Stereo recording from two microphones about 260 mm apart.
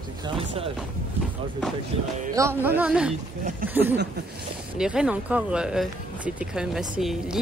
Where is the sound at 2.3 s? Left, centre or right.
Centre.